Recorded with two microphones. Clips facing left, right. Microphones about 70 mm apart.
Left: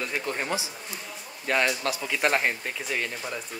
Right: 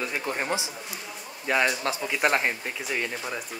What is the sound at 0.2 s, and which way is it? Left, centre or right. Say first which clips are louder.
Speech: right 1 dB; centre.